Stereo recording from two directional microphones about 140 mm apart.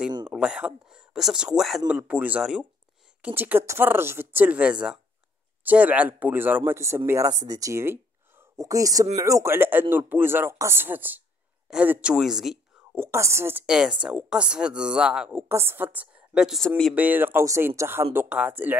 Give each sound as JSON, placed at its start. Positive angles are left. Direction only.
{"t": 0.3, "sound": "speech", "side_deg": -5}
{"t": 12.9, "sound": "speech", "side_deg": -20}
{"t": 16.9, "sound": "speech", "side_deg": -10}